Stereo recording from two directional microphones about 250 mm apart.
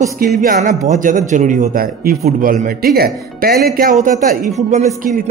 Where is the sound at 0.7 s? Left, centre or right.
Right.